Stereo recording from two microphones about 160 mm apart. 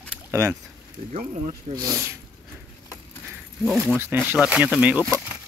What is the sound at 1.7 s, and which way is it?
Speech, 20° right (ahead or behind).